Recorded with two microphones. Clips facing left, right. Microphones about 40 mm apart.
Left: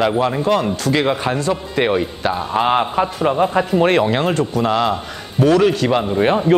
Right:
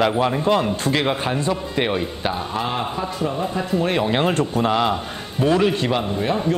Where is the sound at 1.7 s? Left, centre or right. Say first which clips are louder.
Left 6 dB; centre.